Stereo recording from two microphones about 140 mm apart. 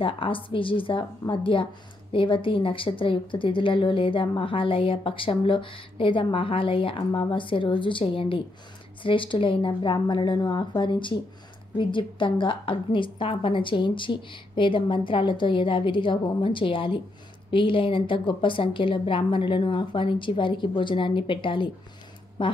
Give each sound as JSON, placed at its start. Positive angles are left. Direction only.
{"t": 0.0, "sound": "a woman's voice", "side_deg": 40}